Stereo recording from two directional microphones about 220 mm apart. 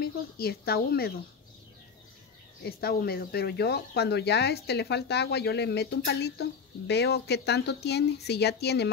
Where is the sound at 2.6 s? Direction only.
45° left (ahead or behind).